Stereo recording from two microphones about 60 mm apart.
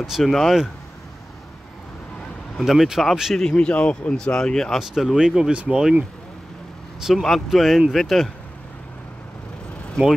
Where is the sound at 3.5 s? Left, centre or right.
Left.